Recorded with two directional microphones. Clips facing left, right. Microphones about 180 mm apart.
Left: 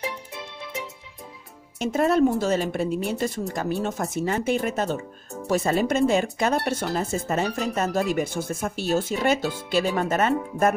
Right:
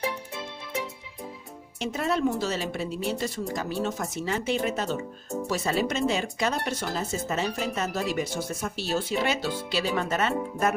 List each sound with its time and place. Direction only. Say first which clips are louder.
1.8 s speech: left 7 dB; 50° left (ahead or behind)